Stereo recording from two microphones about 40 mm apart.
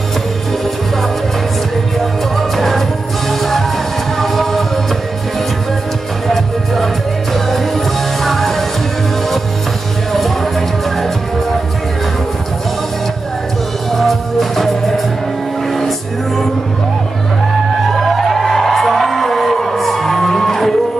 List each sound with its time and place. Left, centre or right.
2.3 s music: centre
6.2 s music: centre
10.1 s music: centre
13.9 s music: centre
17.9 s music: centre